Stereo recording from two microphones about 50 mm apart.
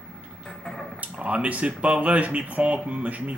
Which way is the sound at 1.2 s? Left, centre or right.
Right.